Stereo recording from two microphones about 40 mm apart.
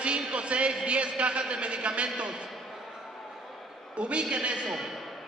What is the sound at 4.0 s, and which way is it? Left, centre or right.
Speech, right.